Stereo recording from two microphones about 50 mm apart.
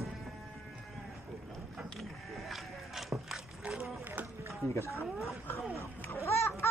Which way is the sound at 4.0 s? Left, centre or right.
Right.